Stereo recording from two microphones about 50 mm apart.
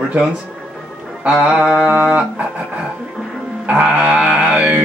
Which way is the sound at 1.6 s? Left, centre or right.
Right.